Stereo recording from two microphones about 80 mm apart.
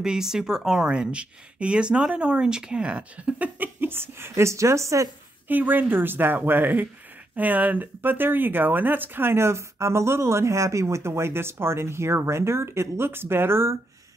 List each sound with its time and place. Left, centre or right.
0.0 s speech: centre; by 5.1 s right
5.5 s speech: right